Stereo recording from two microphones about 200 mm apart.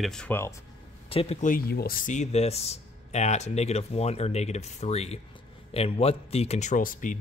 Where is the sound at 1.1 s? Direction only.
30° left (ahead or behind).